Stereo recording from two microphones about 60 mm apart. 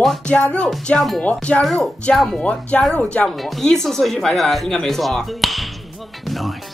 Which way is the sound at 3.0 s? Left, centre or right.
Left.